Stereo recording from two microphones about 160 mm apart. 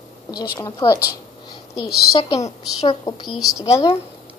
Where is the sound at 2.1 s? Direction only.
30° left (ahead or behind).